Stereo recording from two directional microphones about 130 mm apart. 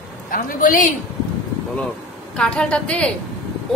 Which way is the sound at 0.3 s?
90° left.